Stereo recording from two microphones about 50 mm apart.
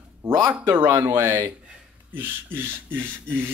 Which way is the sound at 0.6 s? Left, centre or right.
Right.